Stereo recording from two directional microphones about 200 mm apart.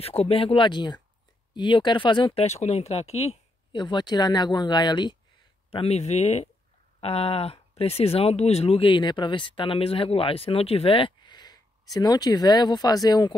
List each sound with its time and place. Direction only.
0.0 s speech: 30° left (ahead or behind)